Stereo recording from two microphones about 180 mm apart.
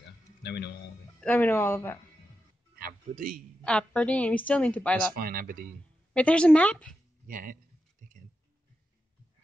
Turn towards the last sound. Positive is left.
turn(degrees=-50)  # may be behind; listen again after turning